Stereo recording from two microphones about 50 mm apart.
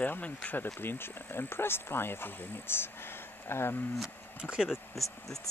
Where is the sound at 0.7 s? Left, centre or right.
Left.